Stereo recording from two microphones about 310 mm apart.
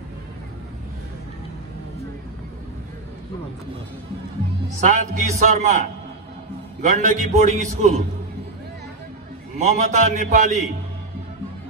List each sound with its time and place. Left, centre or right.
4.7 s a man's voice: right
9.6 s a man's voice: right